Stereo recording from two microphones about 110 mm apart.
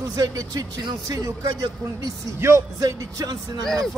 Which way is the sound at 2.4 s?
30° right (ahead or behind).